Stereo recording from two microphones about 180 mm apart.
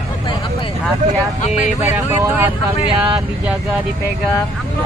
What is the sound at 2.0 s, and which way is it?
Speech, 10° right (ahead or behind).